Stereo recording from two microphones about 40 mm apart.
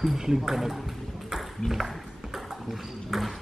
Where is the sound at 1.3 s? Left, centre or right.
Centre.